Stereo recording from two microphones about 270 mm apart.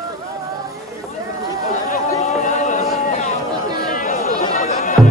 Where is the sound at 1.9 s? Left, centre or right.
Left.